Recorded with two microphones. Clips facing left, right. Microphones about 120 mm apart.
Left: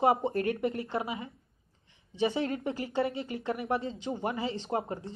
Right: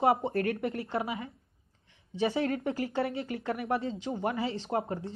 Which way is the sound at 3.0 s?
15° left (ahead or behind).